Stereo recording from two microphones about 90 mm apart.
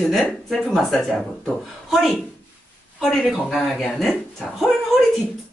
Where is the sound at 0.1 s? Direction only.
5° left (ahead or behind).